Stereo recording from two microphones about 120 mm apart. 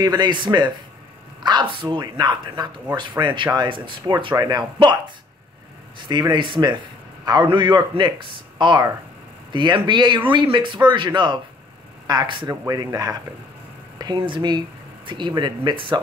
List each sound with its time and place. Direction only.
0.0 s speech: 35° right (ahead or behind)
12.6 s speech: 30° right (ahead or behind)